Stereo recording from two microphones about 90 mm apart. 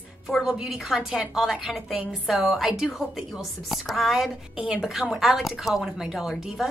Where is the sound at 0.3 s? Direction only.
5° right (ahead or behind).